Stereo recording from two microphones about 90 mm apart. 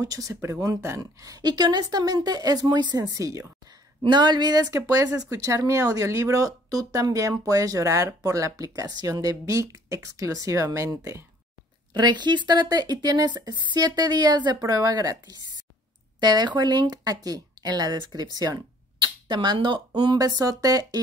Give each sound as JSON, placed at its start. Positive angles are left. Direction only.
{"t": 0.0, "sound": "speech", "side_deg": -35}
{"t": 1.2, "sound": "speech", "side_deg": -50}
{"t": 4.0, "sound": "speech", "side_deg": -55}
{"t": 11.9, "sound": "speech", "side_deg": -55}
{"t": 20.2, "sound": "speech", "side_deg": -40}